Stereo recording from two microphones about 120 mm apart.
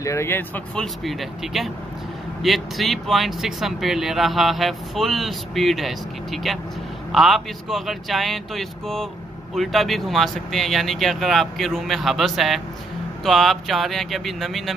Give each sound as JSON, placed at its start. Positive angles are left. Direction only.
{"t": 0.0, "sound": "speech", "side_deg": 25}
{"t": 0.7, "sound": "speech", "side_deg": 0}